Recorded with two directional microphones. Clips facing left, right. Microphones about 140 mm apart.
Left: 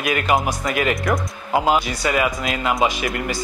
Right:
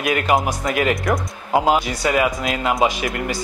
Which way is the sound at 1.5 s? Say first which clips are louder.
Right 1 dB; 40° right (ahead or behind).